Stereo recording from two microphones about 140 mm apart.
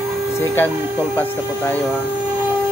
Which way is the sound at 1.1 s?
15° left (ahead or behind).